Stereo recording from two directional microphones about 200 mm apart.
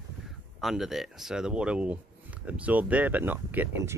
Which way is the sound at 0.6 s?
Centre (ahead or behind).